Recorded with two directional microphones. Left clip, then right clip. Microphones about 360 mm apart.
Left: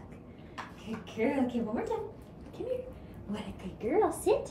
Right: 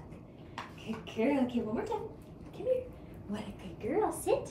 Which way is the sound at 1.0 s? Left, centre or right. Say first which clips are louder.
Even; centre.